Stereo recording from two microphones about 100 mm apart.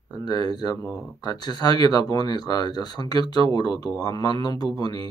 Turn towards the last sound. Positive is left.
turn(degrees=45)  # may be behind; listen again after turning